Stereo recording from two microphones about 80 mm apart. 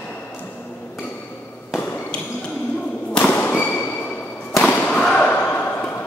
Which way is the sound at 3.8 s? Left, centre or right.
Left.